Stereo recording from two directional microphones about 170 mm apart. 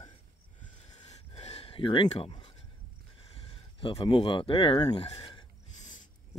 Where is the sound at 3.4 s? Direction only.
35° left (ahead or behind).